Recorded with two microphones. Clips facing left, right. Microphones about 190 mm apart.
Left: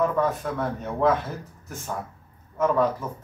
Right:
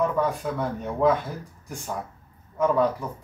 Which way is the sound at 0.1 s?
10° right (ahead or behind).